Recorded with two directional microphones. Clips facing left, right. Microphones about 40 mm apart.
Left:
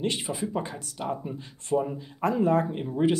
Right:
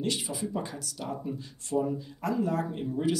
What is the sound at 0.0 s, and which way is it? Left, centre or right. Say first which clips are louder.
Speech: left 3 dB; left.